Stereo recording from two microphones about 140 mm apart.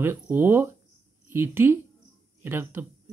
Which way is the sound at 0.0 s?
15° right (ahead or behind).